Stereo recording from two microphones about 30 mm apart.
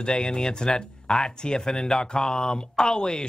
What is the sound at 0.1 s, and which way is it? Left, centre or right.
Speech, centre.